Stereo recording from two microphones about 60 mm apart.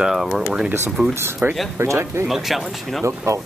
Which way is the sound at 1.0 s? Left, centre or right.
Centre.